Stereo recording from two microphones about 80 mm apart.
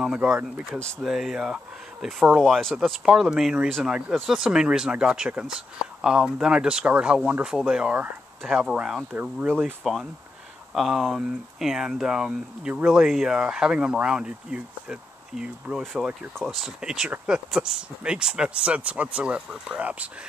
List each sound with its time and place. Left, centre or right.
0.0 s speech: centre
9.1 s speech: right
9.8 s speech: centre
15.8 s speech: centre